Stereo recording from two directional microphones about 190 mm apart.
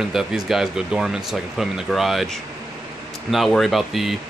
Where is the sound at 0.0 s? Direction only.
Centre (ahead or behind).